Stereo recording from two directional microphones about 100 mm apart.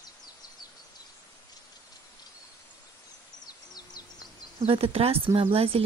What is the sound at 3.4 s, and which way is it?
Bird, 40° left (ahead or behind).